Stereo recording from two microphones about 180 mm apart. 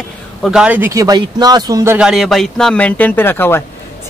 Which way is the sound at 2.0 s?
Centre (ahead or behind).